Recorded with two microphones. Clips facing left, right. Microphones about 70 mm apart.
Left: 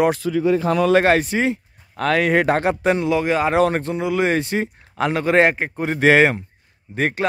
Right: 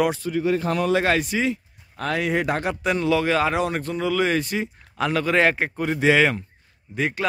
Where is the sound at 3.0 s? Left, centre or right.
Centre.